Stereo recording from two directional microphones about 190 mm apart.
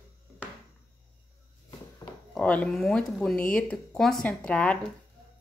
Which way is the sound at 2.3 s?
5° left (ahead or behind).